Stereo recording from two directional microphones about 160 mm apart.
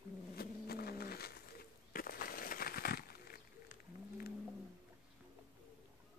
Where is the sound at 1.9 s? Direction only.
65° left (ahead or behind).